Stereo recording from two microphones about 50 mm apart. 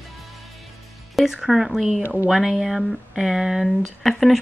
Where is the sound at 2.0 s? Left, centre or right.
Right.